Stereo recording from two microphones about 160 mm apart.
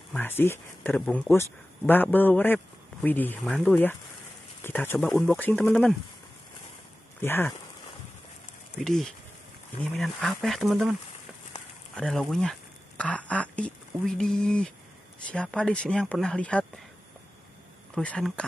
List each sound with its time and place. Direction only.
0.1 s speech: 15° left (ahead or behind)
4.9 s speech: centre (ahead or behind)
7.2 s speech: 15° left (ahead or behind)
8.8 s speech: centre (ahead or behind)
17.9 s speech: 5° left (ahead or behind)